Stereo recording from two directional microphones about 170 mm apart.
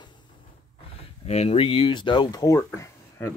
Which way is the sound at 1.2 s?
40° left (ahead or behind).